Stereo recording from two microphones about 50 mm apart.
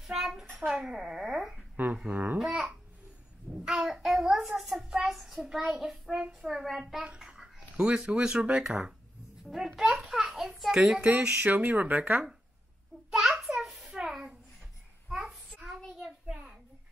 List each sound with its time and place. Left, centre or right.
0.0 s a sound: centre
2.0 s speech: right
2.3 s speech: centre
3.5 s child singing: centre
7.2 s speech: centre
9.4 s babbling: centre
10.0 s a sound: centre
10.7 s speech: centre
11.3 s speech: right
13.1 s a sound: centre
15.0 s child singing: centre
16.3 s a sound: centre